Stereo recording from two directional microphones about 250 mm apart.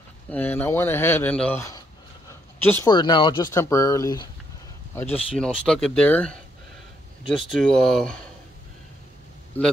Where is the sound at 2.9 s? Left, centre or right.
Centre.